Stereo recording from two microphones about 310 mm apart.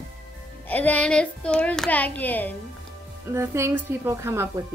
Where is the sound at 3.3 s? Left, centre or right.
Centre.